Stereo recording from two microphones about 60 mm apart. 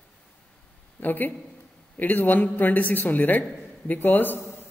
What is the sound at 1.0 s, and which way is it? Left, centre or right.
A man's voice, left.